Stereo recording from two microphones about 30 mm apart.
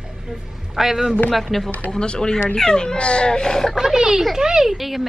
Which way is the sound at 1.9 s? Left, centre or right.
Left.